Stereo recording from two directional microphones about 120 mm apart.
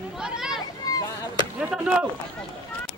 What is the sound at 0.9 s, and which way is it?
Chop, 30° left (ahead or behind).